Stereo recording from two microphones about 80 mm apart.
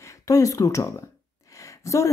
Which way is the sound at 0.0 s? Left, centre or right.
Left.